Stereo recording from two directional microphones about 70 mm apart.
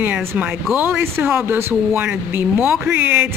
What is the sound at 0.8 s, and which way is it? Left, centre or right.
Speech, right.